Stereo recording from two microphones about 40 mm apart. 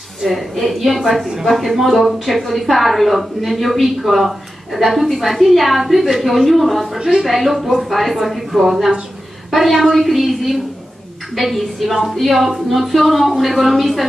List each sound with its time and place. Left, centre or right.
0.2 s a woman's voice: centre
7.0 s a woman's voice: centre
7.2 s a woman's voice: centre